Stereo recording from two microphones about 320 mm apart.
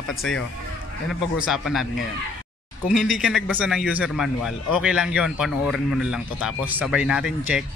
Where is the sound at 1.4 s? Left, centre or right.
Centre.